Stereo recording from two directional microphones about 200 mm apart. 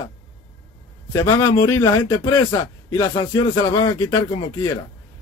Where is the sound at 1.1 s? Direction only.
15° left (ahead or behind).